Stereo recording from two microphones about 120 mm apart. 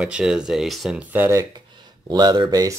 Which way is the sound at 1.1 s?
15° right (ahead or behind).